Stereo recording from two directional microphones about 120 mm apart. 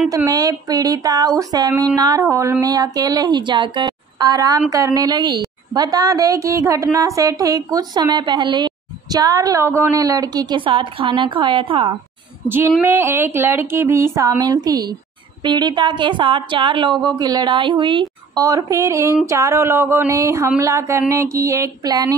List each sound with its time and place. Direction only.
0.3 s a woman's voice: 30° right (ahead or behind); by 12.0 s 45° right (ahead or behind)
12.4 s a woman's voice: 15° right (ahead or behind); by 18.4 s 45° right (ahead or behind)
18.4 s speech: 30° right (ahead or behind)